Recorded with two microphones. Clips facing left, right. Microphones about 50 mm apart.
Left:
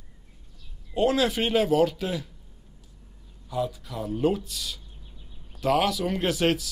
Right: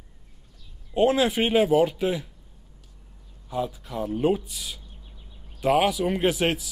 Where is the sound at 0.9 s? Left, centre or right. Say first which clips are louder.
Right 2 dB; right.